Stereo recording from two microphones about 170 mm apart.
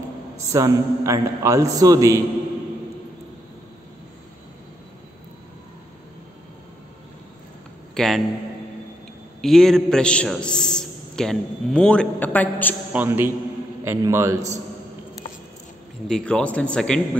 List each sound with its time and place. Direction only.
0.5 s a man's voice: 20° right (ahead or behind)
7.9 s a sound: centre (ahead or behind)
9.4 s a man's voice: centre (ahead or behind)
12.9 s a man's voice: 10° right (ahead or behind)
16.1 s a man's voice: 5° left (ahead or behind)